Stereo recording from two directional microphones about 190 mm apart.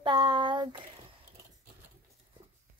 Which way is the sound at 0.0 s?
25° right (ahead or behind).